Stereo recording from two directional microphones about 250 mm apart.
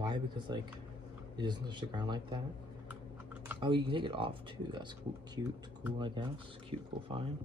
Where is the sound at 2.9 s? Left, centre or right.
Centre.